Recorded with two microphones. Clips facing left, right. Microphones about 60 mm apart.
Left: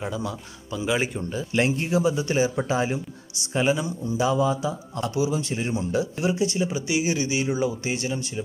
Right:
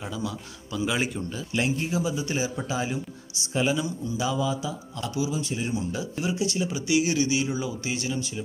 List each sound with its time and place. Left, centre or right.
0.0 s speech: left
1.5 s a man's voice: left
6.2 s speech: left
7.5 s speech: left